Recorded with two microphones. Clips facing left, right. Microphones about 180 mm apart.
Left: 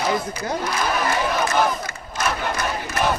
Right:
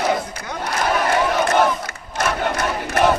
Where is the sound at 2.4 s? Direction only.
70° right (ahead or behind).